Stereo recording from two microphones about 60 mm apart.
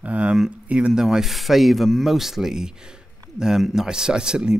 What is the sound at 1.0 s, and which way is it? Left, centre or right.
Speech, centre.